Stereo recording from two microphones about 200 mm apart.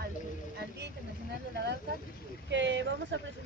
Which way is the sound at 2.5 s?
65° right (ahead or behind).